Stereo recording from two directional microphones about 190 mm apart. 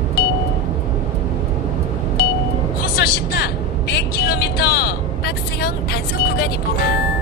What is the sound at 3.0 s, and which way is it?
Vehicle, 55° left (ahead or behind).